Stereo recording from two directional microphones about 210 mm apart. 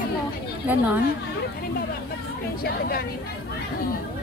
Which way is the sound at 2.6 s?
45° left (ahead or behind).